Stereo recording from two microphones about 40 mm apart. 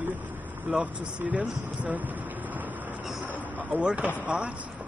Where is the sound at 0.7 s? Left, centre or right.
Right.